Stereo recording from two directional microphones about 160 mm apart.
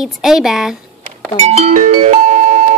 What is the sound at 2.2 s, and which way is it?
Music, 50° right (ahead or behind).